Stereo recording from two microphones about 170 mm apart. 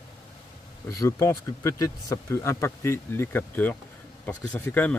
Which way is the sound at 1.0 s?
20° left (ahead or behind).